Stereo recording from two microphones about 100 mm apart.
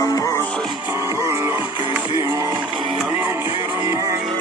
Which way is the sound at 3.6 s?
35° right (ahead or behind).